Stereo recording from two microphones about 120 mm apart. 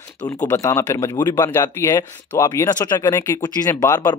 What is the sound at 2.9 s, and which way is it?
Speech, 25° left (ahead or behind).